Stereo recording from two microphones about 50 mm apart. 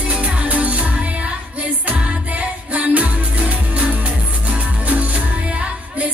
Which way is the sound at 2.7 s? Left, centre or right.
Right.